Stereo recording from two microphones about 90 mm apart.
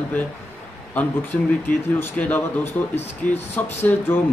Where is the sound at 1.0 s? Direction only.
20° left (ahead or behind).